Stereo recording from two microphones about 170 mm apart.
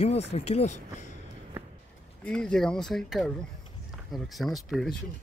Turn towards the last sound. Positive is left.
turn(degrees=0)  # may be behind; listen again after turning